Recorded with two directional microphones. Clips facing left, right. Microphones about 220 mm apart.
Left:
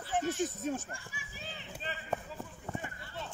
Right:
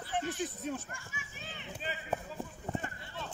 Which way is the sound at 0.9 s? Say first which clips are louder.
Left 1 dB; 35° left (ahead or behind).